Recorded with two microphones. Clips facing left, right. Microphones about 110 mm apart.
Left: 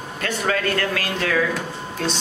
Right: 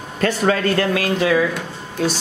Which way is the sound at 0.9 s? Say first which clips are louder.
Right 6 dB; 15° right (ahead or behind).